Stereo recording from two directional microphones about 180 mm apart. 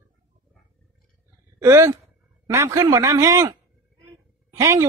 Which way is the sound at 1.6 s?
15° right (ahead or behind).